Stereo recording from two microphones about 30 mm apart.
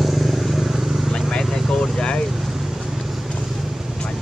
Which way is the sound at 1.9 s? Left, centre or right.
Left.